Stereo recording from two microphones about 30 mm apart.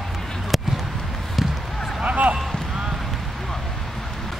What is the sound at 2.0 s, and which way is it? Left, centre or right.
Speech, right.